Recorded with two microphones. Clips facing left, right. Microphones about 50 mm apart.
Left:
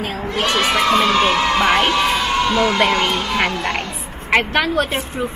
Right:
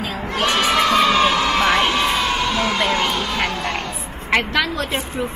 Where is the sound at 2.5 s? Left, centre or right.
Left.